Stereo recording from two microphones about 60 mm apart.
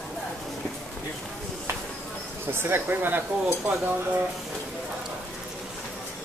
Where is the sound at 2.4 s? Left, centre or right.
Right.